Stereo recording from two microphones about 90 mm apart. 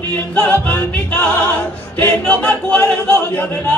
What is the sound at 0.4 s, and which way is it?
Music, 20° left (ahead or behind).